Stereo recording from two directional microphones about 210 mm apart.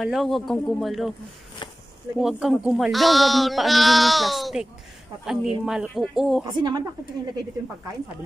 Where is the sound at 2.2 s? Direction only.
Centre (ahead or behind).